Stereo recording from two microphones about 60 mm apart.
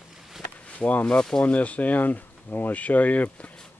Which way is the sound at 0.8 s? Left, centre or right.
Left.